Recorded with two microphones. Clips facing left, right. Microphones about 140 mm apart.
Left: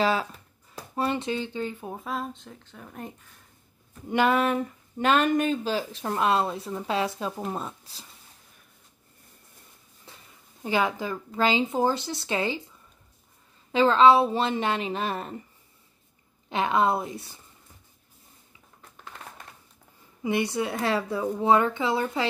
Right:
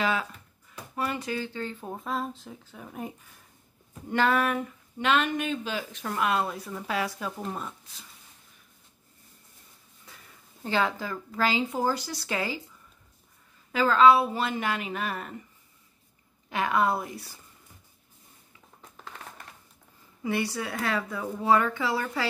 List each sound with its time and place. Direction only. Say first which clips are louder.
0.0 s speech: left 4 dB; 30° left (ahead or behind); by 2.0 s 10° left (ahead or behind)
2.0 s speech: right 4 dB; centre (ahead or behind)
4.1 s speech: left 2 dB; 15° left (ahead or behind)
4.9 s speech: left 4 dB; 45° left (ahead or behind)
10.1 s a sound: left 2 dB; 25° left (ahead or behind)
10.6 s speech: left 2 dB; 15° left (ahead or behind)
13.7 s speech: left 2 dB; 25° left (ahead or behind)
16.4 s speech: left 2 dB; 25° left (ahead or behind)
20.2 s speech: left 3 dB; 20° left (ahead or behind)